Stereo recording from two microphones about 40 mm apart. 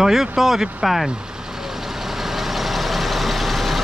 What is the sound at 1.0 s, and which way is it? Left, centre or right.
Vehicle, centre.